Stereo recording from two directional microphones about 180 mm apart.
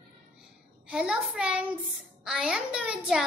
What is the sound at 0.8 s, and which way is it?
A child's voice, 5° right (ahead or behind).